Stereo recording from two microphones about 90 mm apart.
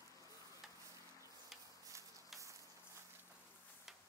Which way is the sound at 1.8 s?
35° right (ahead or behind).